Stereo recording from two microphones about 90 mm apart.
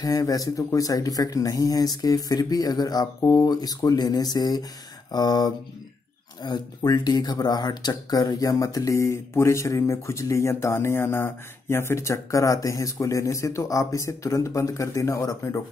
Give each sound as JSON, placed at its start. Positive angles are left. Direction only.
{"t": 0.0, "sound": "speech", "side_deg": 40}